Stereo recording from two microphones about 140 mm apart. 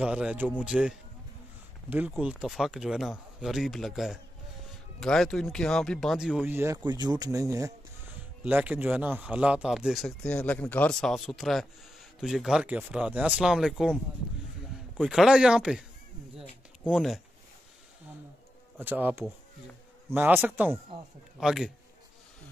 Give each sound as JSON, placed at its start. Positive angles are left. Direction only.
{"t": 0.0, "sound": "a man's voice", "side_deg": -5}
{"t": 6.5, "sound": "a man's voice", "side_deg": -15}
{"t": 6.8, "sound": "speech", "side_deg": -30}
{"t": 8.5, "sound": "speech", "side_deg": -10}
{"t": 15.0, "sound": "speech", "side_deg": -5}
{"t": 16.3, "sound": "a sound", "side_deg": -5}
{"t": 18.8, "sound": "a man's voice", "side_deg": -15}